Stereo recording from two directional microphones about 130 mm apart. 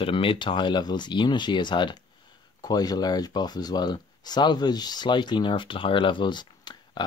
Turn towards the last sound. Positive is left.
turn(degrees=35)  # may be behind; listen again after turning